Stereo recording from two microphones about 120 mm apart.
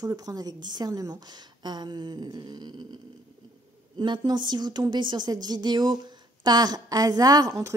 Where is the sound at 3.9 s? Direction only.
40° right (ahead or behind).